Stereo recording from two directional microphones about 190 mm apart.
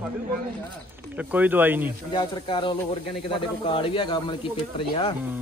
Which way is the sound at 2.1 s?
25° left (ahead or behind).